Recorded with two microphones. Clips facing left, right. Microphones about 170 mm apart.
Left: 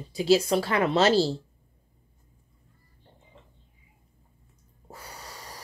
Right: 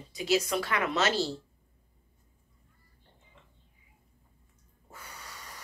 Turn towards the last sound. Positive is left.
turn(degrees=35)  # may be behind; listen again after turning